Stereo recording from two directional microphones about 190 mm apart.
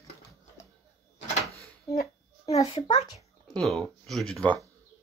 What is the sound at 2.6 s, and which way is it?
Speech, 20° left (ahead or behind).